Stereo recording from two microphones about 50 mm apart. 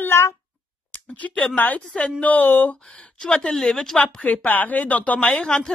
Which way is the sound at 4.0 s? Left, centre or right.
Left.